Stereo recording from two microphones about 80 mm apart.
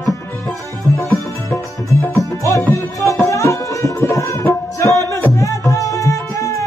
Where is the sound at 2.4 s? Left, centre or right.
Left.